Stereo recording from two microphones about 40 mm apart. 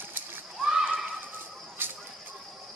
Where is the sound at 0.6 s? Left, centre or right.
Centre.